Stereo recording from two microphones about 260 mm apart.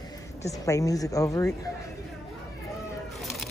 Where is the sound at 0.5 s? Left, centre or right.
Centre.